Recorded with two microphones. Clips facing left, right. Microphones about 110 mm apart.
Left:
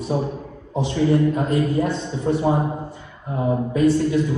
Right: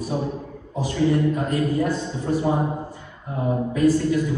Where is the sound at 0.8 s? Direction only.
25° left (ahead or behind).